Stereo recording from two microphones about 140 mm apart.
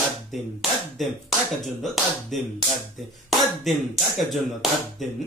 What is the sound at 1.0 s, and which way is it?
Speech, centre (ahead or behind).